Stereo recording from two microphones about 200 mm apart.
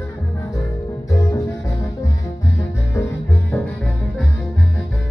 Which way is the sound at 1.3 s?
15° left (ahead or behind).